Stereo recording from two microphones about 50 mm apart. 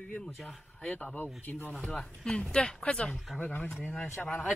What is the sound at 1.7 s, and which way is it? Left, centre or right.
Speech, left.